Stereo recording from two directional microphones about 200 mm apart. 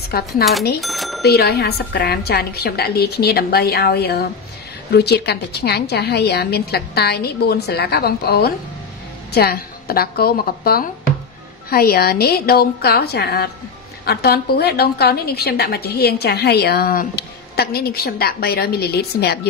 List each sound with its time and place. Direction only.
0.1 s a woman's voice: 50° left (ahead or behind)
0.7 s cash register: centre (ahead or behind)
1.2 s a woman's voice: 55° left (ahead or behind)